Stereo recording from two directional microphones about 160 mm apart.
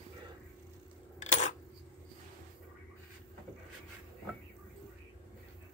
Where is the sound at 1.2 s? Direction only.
50° left (ahead or behind).